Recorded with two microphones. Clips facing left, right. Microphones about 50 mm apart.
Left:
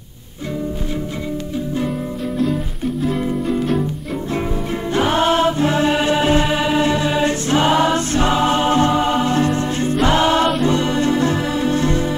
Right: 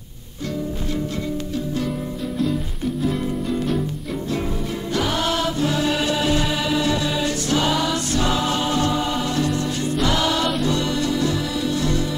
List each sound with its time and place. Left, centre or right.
4.9 s music: left